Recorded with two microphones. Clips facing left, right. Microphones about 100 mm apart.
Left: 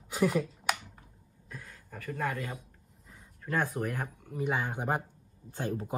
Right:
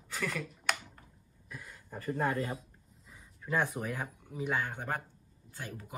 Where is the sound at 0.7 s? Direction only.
5° left (ahead or behind).